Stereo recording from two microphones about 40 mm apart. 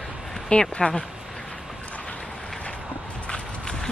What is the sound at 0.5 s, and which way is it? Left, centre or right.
Speech, left.